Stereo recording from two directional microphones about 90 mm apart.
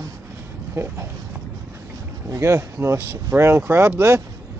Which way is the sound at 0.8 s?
30° right (ahead or behind).